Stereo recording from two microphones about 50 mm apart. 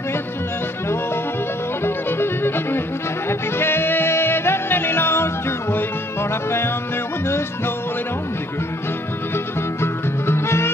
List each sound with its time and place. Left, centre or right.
2.0 s music: left
7.2 s music: left
9.3 s music: left